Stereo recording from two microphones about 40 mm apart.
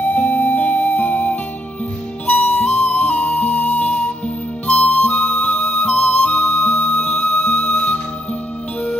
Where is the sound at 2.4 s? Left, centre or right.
Left.